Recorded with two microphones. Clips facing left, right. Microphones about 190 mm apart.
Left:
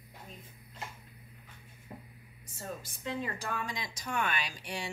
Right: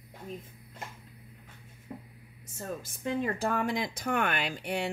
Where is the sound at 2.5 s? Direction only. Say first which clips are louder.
Right 4 dB; 50° right (ahead or behind).